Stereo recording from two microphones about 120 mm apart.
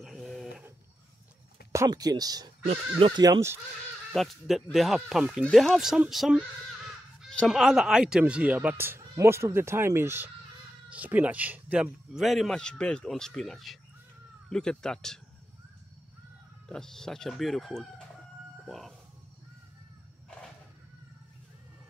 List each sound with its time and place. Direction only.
0.0 s a sound: centre (ahead or behind)
1.7 s speech: 30° right (ahead or behind)
2.6 s speech: 50° right (ahead or behind)
3.2 s speech: 25° right (ahead or behind)
4.1 s speech: centre (ahead or behind)
16.6 s speech: 5° left (ahead or behind)